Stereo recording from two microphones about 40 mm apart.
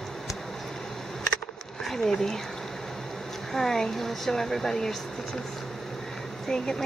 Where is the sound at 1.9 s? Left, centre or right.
Centre.